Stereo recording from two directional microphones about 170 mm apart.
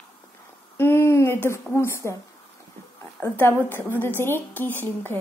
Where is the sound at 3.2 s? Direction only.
15° left (ahead or behind).